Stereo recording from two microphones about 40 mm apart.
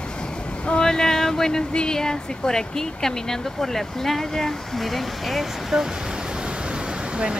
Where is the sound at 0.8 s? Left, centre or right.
Centre.